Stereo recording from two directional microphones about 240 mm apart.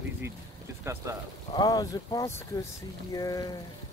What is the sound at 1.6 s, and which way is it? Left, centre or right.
Speech, centre.